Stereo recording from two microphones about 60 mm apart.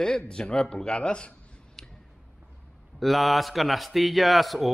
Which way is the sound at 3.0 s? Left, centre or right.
Centre.